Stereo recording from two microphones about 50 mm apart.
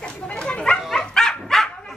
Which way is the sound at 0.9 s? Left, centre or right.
Centre.